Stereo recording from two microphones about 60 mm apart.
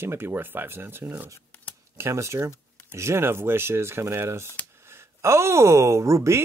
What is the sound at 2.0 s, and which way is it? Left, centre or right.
Speech, right.